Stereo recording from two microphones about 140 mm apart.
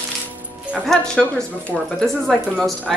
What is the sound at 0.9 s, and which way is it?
Speech, 5° left (ahead or behind).